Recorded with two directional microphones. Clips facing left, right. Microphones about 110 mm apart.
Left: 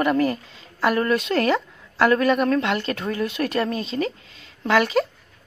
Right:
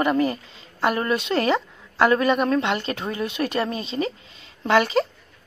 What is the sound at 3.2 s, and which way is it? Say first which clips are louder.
Speech: even; centre (ahead or behind).